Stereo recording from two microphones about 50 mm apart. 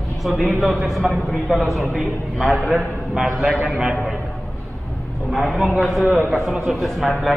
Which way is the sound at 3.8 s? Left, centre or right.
Centre.